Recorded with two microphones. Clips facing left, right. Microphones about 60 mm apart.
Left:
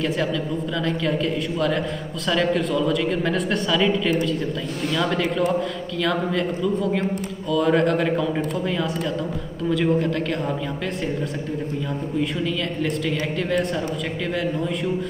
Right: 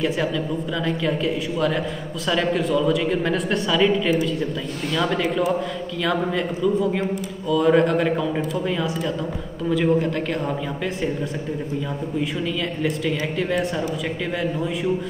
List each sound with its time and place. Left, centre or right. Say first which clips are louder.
0.8 s speech: right 1 dB; centre
9.7 s speech: right 1 dB; centre
12.8 s speech: right 1 dB; centre